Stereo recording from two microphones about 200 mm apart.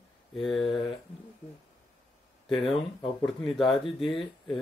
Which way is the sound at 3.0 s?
5° left (ahead or behind).